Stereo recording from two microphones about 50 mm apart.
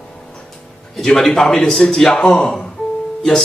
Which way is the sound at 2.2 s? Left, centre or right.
Centre.